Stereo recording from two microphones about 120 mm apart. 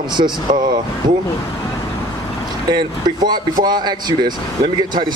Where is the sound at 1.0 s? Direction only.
35° right (ahead or behind).